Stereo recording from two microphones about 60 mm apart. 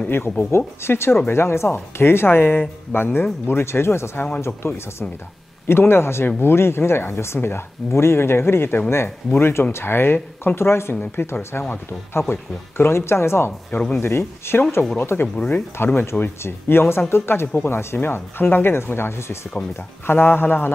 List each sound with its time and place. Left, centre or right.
0.5 s speech: left
11.0 s speech: left
13.7 s speech: left
13.9 s speech: left
15.3 s speech: left
15.8 s speech: left